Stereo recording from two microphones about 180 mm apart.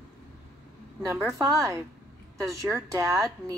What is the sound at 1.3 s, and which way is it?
Speech, 15° right (ahead or behind).